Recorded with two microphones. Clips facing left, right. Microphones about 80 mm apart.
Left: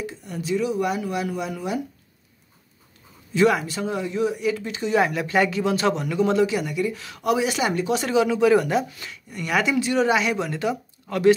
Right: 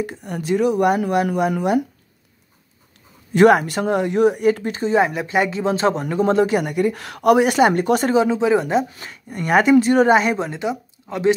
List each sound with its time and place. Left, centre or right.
0.0 s speech: right
3.3 s speech: right
4.9 s speech: right
8.9 s speech: right